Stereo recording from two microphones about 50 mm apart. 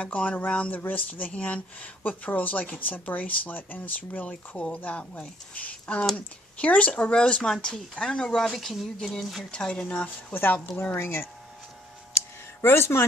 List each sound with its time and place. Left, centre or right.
0.0 s speech: left
1.3 s speech: left
8.5 s speech: centre
9.5 s speech: centre
10.0 s speech: left
12.6 s speech: left